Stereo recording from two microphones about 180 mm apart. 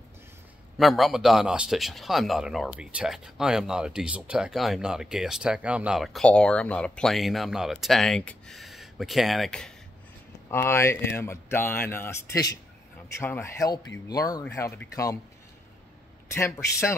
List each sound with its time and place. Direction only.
0.7 s speech: centre (ahead or behind)
10.5 s speech: 15° left (ahead or behind)
16.3 s speech: 15° left (ahead or behind)